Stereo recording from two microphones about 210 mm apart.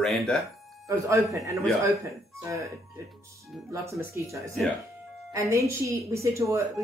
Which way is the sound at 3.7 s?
15° right (ahead or behind).